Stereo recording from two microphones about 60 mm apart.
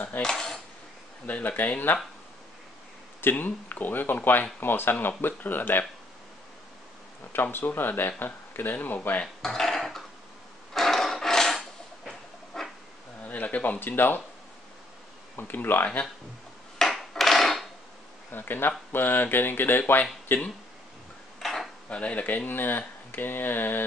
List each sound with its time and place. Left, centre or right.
0.2 s cutlery: centre
1.2 s speech: left
3.2 s speech: left
7.5 s speech: left
9.2 s dishes: centre
10.7 s filing: centre
12.1 s a sound: centre
13.2 s a sound: left
15.3 s speech: left
16.7 s a sound: centre
18.3 s speech: left
21.4 s cutlery: centre
21.8 s speech: left